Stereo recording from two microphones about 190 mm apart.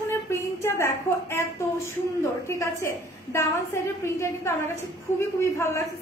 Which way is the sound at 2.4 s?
15° left (ahead or behind).